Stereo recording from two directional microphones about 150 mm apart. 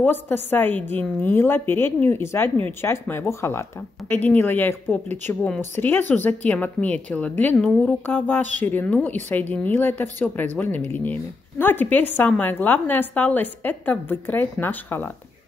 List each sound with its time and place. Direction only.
0.0 s a woman's voice: 15° left (ahead or behind)